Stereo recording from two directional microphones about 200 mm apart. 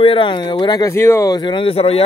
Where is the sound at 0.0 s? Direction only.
25° left (ahead or behind).